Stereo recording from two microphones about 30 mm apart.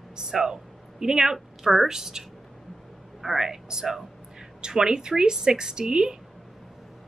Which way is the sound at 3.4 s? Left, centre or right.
Centre.